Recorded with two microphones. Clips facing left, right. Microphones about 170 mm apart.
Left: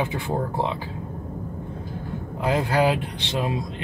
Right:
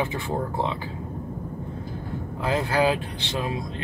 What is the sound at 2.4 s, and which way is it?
Speech, 20° left (ahead or behind).